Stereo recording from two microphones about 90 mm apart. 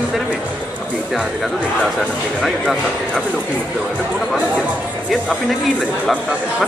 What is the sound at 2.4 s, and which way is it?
Speech, centre (ahead or behind).